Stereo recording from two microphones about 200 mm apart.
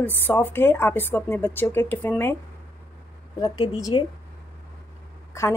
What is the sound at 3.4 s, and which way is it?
Speech, 20° left (ahead or behind).